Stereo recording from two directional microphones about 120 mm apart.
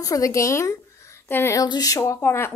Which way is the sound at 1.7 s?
30° left (ahead or behind).